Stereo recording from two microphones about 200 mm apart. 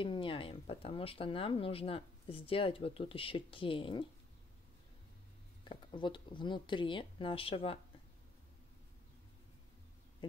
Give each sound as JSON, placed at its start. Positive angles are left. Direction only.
{"t": 0.0, "sound": "speech", "side_deg": 25}
{"t": 5.6, "sound": "speech", "side_deg": 25}